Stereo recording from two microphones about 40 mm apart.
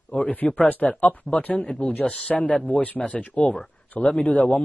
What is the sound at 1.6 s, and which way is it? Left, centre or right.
Speech, left.